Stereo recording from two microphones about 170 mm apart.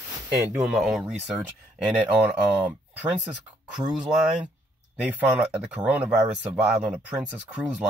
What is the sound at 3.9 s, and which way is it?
Speech, 5° right (ahead or behind).